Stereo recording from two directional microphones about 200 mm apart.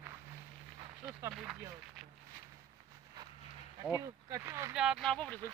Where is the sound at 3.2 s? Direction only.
20° right (ahead or behind).